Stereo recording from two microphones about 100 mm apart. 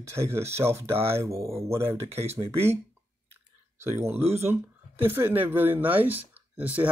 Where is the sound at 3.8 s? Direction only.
25° right (ahead or behind).